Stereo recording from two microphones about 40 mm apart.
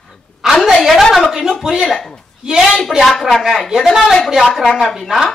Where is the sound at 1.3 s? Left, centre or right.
Centre.